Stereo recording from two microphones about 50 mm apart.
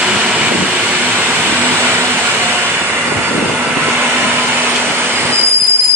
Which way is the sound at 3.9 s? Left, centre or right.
Right.